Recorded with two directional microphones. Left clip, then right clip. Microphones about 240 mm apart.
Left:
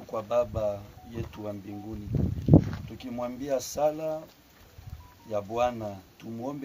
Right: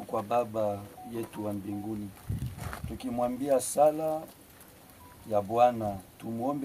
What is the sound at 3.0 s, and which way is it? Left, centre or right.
Speech, centre.